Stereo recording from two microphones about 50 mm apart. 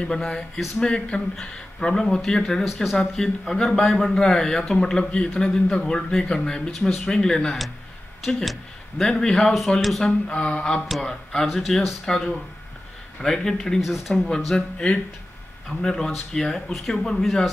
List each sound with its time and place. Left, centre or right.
0.2 s a man's voice: centre
0.7 s a man's voice: centre
2.6 s speech: centre
3.2 s a man's voice: centre
9.8 s speech: centre
10.2 s a man's voice: centre
13.7 s speech: centre
14.3 s a man's voice: centre